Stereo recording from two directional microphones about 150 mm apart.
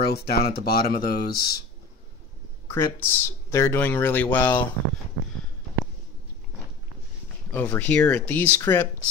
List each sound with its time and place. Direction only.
0.0 s speech: 90° left
2.7 s speech: 20° left (ahead or behind)
7.5 s speech: 10° left (ahead or behind)